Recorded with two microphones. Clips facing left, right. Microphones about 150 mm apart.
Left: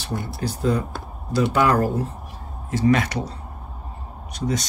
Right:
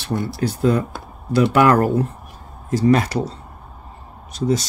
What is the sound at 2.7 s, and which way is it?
Speech, 35° right (ahead or behind).